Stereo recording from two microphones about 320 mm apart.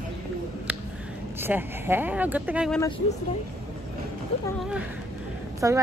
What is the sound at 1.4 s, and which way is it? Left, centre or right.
Speech, centre.